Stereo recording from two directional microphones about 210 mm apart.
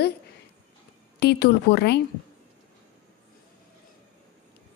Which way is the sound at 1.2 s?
50° left (ahead or behind).